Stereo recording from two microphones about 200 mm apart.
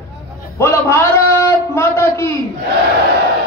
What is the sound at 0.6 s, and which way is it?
A man's voice, 15° left (ahead or behind).